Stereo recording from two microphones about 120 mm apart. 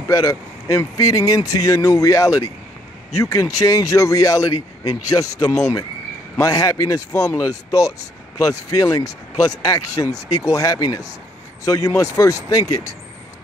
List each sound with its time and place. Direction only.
0.1 s speech: 30° left (ahead or behind)